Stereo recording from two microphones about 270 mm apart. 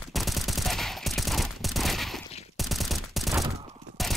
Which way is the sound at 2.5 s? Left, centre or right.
Centre.